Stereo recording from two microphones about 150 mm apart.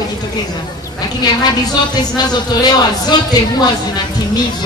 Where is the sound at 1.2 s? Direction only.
25° left (ahead or behind).